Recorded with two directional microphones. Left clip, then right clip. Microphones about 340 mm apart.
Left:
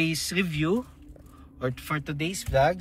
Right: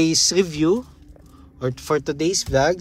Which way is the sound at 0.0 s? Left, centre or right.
Centre.